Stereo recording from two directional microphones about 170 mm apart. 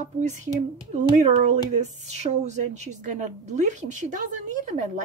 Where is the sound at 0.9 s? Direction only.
45° right (ahead or behind).